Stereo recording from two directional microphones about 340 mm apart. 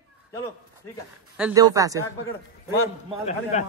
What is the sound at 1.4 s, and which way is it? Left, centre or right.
Speech, centre.